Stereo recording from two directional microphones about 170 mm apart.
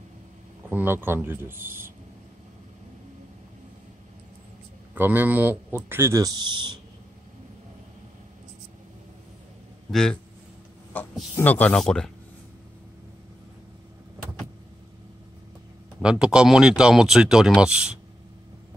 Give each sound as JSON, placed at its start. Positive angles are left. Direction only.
{"t": 0.7, "sound": "speech", "side_deg": -10}
{"t": 4.9, "sound": "speech", "side_deg": -10}
{"t": 9.8, "sound": "speech", "side_deg": 5}
{"t": 11.3, "sound": "speech", "side_deg": 10}
{"t": 16.0, "sound": "speech", "side_deg": -5}